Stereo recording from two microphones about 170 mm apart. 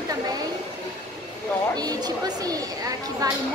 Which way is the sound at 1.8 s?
25° right (ahead or behind).